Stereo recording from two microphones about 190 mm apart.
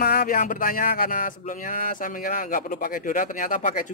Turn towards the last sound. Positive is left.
turn(degrees=45)  # may be behind; listen again after turning